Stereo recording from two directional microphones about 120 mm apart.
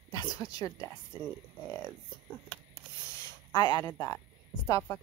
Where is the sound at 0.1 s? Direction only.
30° left (ahead or behind).